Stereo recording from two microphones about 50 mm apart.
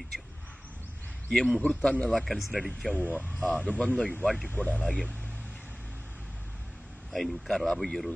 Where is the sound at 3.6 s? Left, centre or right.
Left.